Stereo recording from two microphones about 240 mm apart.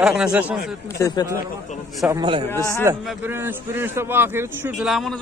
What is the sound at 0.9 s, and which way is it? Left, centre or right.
Speech, centre.